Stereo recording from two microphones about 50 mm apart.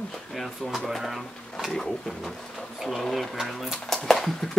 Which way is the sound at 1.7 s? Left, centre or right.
Centre.